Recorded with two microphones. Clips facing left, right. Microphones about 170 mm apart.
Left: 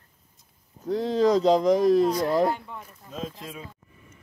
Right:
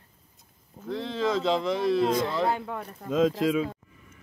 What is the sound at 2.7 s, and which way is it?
Speech, 70° right (ahead or behind).